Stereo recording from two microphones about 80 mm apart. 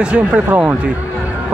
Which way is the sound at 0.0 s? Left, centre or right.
Centre.